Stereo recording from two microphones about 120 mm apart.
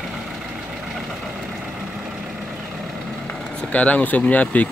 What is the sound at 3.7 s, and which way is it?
Speech, 10° left (ahead or behind).